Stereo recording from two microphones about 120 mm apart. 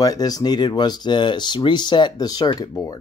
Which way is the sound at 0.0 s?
30° left (ahead or behind).